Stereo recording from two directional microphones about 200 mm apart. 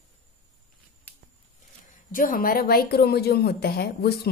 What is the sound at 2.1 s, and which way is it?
A woman's voice, 45° left (ahead or behind).